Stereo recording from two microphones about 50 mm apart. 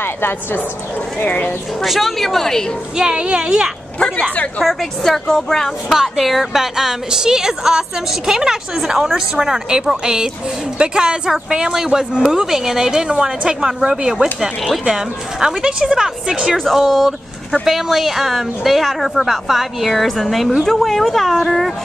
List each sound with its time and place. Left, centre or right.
0.0 s speech: left
1.2 s speech: left
1.8 s speech: centre
3.0 s a woman's voice: centre
4.0 s speech: left
4.6 s a woman's voice: centre
5.9 s a woman's voice: centre
16.7 s speech: centre